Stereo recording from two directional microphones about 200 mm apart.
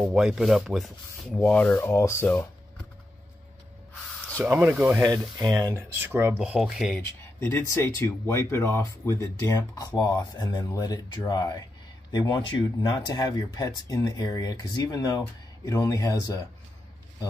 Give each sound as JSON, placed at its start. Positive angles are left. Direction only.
{"t": 0.0, "sound": "speech", "side_deg": 0}
{"t": 4.4, "sound": "speech", "side_deg": -10}
{"t": 7.2, "sound": "speech", "side_deg": 15}